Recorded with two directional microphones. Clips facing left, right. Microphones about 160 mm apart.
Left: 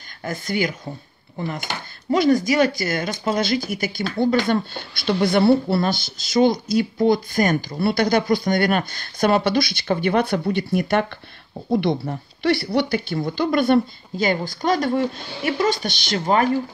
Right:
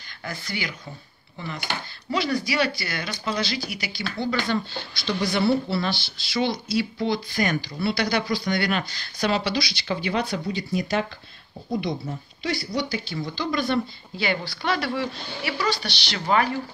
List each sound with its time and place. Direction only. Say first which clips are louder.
0.2 s speech: left 9 dB; 45° left (ahead or behind)